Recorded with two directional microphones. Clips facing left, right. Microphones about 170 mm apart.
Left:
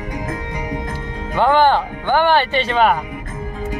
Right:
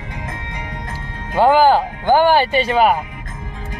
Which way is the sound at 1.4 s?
10° right (ahead or behind).